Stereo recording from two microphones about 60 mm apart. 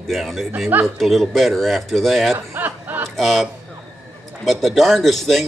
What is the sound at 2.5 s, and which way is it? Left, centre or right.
Snicker, right.